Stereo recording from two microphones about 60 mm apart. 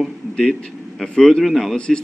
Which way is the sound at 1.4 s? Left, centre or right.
Centre.